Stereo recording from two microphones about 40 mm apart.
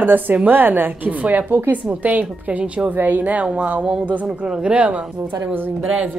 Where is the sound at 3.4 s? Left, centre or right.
Right.